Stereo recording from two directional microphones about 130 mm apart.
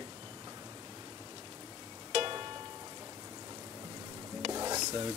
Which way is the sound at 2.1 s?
40° right (ahead or behind).